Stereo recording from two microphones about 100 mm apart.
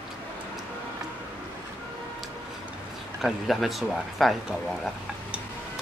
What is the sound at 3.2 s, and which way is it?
Speech, centre (ahead or behind).